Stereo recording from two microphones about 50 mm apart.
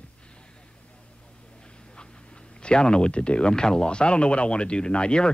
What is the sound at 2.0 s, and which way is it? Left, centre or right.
Speech, centre.